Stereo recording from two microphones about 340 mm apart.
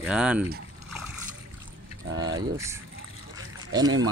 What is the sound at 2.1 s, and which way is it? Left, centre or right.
Vehicle, right.